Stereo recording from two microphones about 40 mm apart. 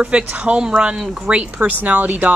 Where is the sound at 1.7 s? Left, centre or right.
Right.